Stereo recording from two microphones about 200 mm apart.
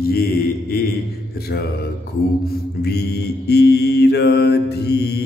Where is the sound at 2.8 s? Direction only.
55° left (ahead or behind).